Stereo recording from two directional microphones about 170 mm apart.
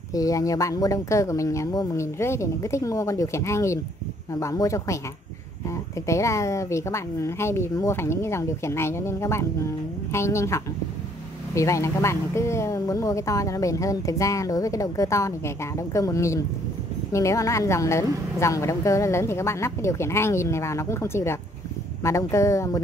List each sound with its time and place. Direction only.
0.1 s speech: 20° left (ahead or behind)
6.0 s a woman's voice: 15° left (ahead or behind)